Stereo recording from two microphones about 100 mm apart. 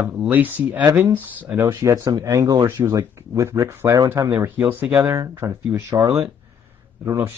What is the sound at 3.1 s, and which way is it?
Speech, 30° right (ahead or behind).